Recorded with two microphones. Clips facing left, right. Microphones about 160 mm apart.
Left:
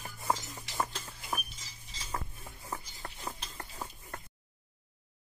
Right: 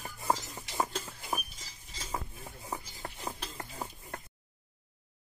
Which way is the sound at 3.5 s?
15° right (ahead or behind).